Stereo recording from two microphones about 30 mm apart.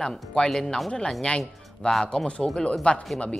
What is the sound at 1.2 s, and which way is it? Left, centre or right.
Speech, left.